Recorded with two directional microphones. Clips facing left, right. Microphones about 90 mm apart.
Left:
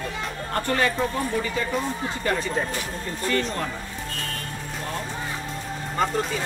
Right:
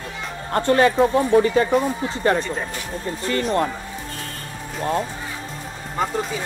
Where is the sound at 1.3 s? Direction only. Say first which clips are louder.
Right 10 dB; 50° right (ahead or behind).